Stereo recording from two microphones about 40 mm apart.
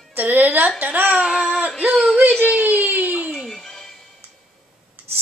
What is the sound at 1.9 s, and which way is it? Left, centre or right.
Speech, centre.